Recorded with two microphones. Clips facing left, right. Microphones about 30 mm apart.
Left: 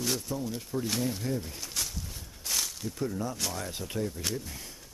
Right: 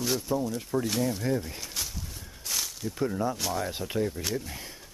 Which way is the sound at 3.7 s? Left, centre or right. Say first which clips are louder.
Right 4 dB; centre.